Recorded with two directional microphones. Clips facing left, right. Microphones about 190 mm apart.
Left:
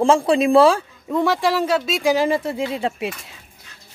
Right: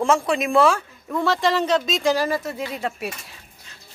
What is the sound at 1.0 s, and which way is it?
Speech, 15° left (ahead or behind).